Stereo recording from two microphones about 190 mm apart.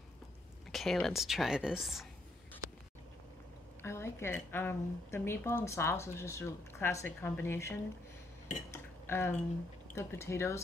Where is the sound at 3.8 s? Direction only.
15° left (ahead or behind).